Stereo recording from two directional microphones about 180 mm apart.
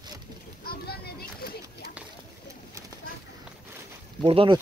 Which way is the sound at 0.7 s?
60° left (ahead or behind).